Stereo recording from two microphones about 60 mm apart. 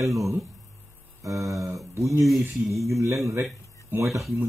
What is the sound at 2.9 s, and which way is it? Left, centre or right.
Speech, right.